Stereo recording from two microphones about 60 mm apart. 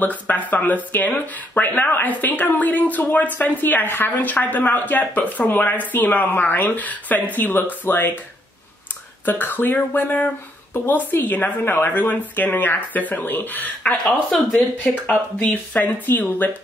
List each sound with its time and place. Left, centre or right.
0.0 s speech: left
9.2 s a woman's voice: left